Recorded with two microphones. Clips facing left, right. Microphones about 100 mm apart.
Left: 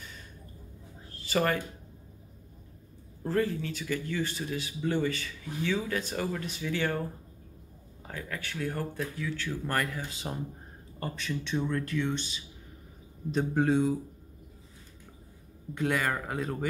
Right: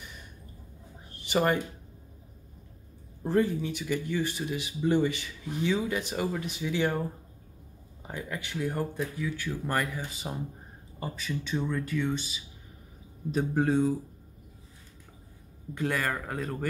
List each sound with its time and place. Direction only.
1.1 s a sound: 20° right (ahead or behind)
3.3 s speech: 20° right (ahead or behind); by 13.9 s centre (ahead or behind)
15.7 s speech: centre (ahead or behind)